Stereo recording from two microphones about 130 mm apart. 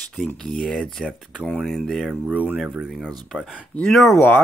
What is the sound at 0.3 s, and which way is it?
Speech, 5° left (ahead or behind).